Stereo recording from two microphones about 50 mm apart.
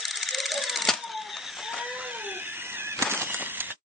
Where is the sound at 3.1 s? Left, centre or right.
Right.